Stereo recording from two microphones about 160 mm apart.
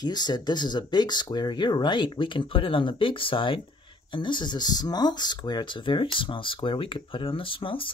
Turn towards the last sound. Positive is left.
turn(degrees=35)  # may be behind; listen again after turning